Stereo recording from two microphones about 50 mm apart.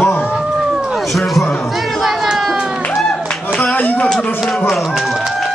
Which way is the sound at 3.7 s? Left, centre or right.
Left.